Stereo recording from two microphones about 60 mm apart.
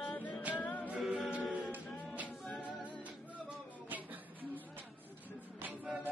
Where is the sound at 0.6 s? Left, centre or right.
Left.